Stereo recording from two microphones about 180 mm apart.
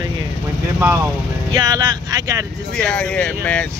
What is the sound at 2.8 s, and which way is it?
Speech, 5° left (ahead or behind).